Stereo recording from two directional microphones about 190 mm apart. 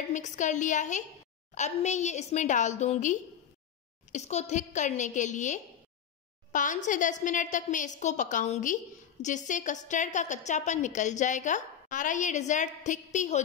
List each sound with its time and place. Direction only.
0.1 s a woman's voice: 40° left (ahead or behind)